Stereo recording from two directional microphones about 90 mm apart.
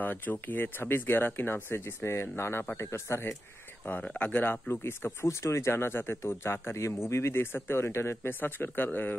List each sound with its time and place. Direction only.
0.0 s a man's voice: 20° left (ahead or behind)
3.8 s speech: 15° left (ahead or behind)